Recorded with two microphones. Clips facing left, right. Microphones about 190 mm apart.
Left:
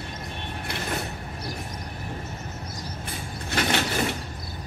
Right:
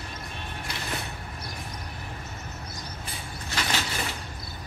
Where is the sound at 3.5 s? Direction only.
60° left (ahead or behind).